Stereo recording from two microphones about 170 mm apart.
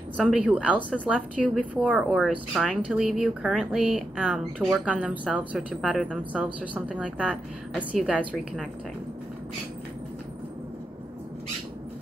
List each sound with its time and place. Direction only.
0.2 s speech: 5° right (ahead or behind)